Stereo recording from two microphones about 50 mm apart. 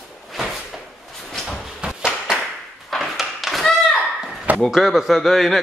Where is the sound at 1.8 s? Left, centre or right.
Centre.